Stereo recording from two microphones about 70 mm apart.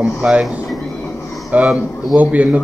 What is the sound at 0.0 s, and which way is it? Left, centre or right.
Speech, centre.